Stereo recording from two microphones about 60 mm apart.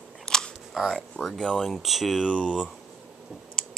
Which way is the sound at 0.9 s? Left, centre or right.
Centre.